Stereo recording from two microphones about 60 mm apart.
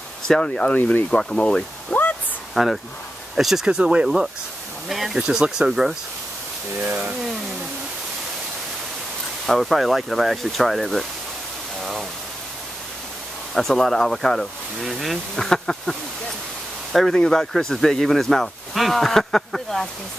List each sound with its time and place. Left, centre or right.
0.3 s speech: centre
2.5 s speech: centre
6.8 s speech: right
9.5 s speech: centre
11.8 s a sound: centre
13.6 s speech: centre